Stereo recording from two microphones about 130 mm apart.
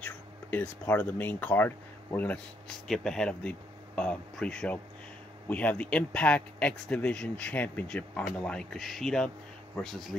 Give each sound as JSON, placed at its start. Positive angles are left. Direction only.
{"t": 0.0, "sound": "speech", "side_deg": 15}